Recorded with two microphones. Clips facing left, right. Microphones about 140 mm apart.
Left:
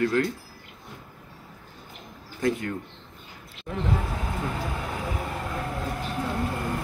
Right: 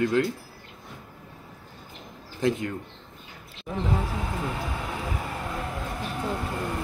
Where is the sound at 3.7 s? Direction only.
15° right (ahead or behind).